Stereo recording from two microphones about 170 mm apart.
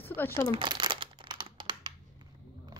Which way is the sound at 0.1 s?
15° left (ahead or behind).